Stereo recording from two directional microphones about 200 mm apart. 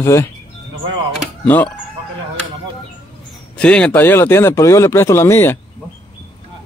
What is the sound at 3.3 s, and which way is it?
Speech, 5° left (ahead or behind).